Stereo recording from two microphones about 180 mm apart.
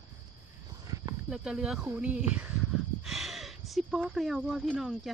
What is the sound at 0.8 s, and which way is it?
Horse, 20° right (ahead or behind).